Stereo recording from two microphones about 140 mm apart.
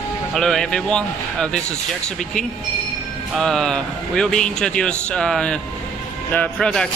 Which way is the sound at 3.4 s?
5° left (ahead or behind).